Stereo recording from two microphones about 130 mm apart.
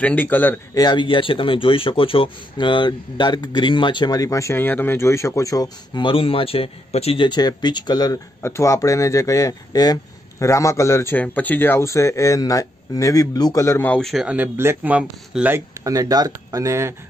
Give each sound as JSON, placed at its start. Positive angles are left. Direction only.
{"t": 0.0, "sound": "speech", "side_deg": 10}
{"t": 0.7, "sound": "speech", "side_deg": 35}
{"t": 6.0, "sound": "a man's voice", "side_deg": 45}
{"t": 7.2, "sound": "speech", "side_deg": 35}
{"t": 8.4, "sound": "speech", "side_deg": 20}
{"t": 13.9, "sound": "speech", "side_deg": 0}
{"t": 14.2, "sound": "speech", "side_deg": -10}
{"t": 15.7, "sound": "speech", "side_deg": -25}